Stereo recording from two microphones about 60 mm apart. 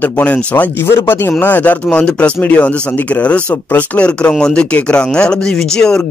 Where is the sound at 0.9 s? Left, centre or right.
Left.